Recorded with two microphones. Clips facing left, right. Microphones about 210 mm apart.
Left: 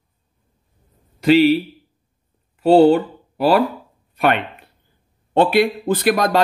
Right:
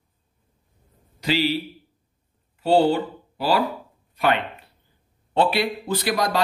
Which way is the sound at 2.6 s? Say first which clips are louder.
Left 7 dB; 60° left (ahead or behind).